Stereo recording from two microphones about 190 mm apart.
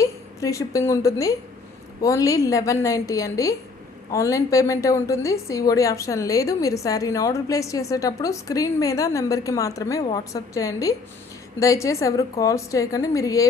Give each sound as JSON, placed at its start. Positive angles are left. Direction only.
{"t": 0.0, "sound": "a woman's voice", "side_deg": 15}